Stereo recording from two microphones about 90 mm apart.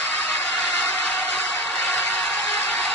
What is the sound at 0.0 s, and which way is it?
Vehicle, 5° left (ahead or behind).